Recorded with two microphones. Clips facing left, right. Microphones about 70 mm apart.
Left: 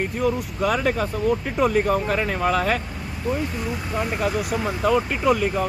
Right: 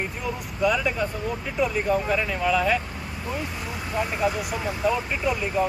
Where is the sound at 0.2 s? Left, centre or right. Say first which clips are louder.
Left 3 dB; left.